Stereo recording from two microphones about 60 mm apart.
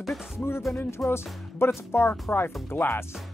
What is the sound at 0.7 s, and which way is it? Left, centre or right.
Speech, left.